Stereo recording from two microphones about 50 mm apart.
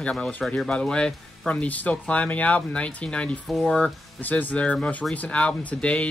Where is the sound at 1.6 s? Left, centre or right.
Left.